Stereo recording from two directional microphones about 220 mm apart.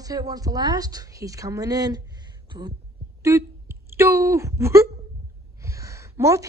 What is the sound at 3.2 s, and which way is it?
A woman's voice, 10° right (ahead or behind).